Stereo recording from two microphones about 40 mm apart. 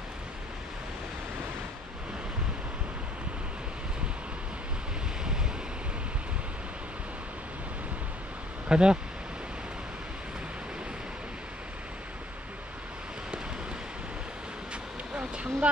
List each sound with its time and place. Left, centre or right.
5.2 s waves: centre
8.6 s a sound: right
14.7 s vehicle: right